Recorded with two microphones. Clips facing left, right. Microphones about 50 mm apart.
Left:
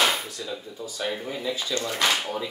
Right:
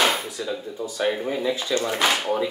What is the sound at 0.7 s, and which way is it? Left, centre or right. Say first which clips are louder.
Speech: right 7 dB; right.